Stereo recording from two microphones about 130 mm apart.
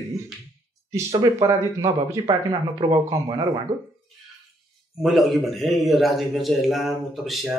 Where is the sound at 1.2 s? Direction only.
25° right (ahead or behind).